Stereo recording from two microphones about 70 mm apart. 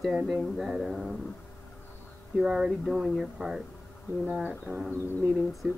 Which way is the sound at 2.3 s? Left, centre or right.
Centre.